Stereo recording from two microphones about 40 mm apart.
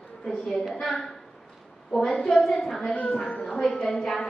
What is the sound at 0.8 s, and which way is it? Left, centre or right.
Speech, centre.